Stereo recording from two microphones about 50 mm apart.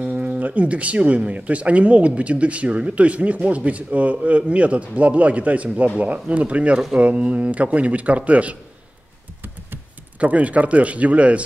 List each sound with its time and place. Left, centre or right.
0.0 s speech: right
10.1 s speech: right